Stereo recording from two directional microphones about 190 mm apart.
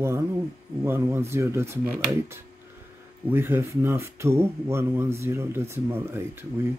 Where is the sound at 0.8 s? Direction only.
15° right (ahead or behind).